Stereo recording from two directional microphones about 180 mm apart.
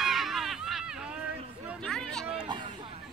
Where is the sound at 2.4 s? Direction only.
25° right (ahead or behind).